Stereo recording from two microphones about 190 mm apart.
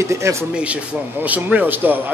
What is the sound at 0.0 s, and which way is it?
A man's voice, 15° right (ahead or behind).